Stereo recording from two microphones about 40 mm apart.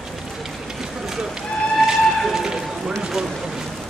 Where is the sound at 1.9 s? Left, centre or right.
Centre.